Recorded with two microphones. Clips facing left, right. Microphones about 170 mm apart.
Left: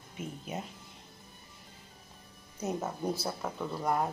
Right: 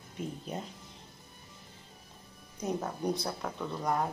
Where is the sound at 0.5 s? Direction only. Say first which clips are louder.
Left 2 dB; 5° left (ahead or behind).